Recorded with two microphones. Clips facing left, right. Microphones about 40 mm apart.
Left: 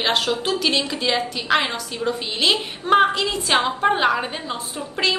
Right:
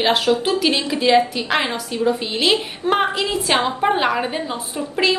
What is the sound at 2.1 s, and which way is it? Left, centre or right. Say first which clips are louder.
A woman's voice: right 2 dB; centre.